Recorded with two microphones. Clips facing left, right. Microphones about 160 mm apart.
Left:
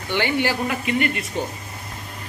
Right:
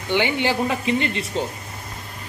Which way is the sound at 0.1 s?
20° right (ahead or behind).